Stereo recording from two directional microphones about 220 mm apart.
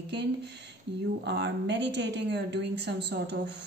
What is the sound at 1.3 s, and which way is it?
A woman's voice, 50° right (ahead or behind).